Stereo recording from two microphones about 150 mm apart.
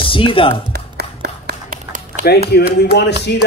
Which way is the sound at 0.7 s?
90° right.